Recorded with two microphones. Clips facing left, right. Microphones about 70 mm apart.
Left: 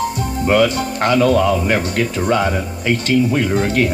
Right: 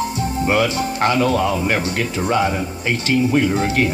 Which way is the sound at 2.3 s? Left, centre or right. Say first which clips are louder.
Right 1 dB; right.